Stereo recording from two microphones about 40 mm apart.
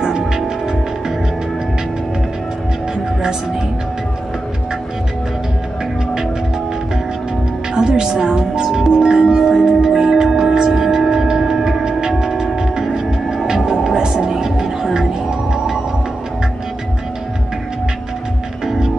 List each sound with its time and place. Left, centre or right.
0.2 s music: centre
7.7 s music: centre